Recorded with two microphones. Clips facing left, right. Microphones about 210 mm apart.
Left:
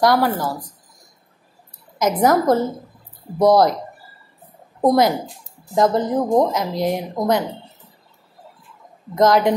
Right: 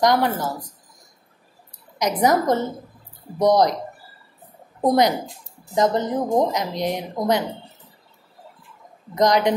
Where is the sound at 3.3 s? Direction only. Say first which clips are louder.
Left 3 dB; 20° right (ahead or behind).